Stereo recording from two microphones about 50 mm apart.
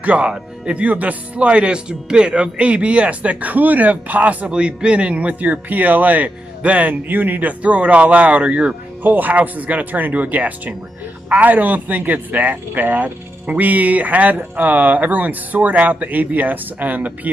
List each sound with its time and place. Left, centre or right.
0.0 s speech: right
9.0 s speech: right